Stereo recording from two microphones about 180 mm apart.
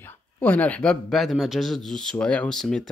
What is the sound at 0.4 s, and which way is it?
Speech, 10° left (ahead or behind).